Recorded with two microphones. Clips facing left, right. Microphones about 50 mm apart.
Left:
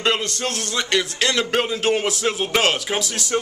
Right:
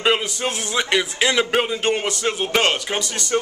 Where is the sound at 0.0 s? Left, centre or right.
Centre.